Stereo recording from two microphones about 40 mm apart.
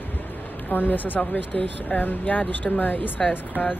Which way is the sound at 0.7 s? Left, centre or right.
Left.